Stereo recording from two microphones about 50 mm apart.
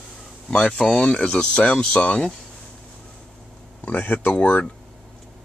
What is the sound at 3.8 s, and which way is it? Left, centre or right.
Speech, left.